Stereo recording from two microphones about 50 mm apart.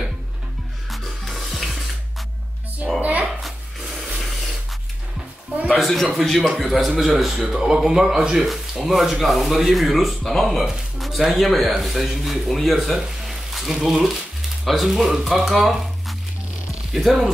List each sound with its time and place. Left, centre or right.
0.8 s rub: centre
3.0 s music: right
3.4 s rub: centre
5.7 s a sound: centre
6.1 s speech: centre
11.0 s a sound: centre
11.3 s speech: centre